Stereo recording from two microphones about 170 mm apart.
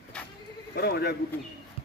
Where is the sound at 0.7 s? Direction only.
65° left (ahead or behind).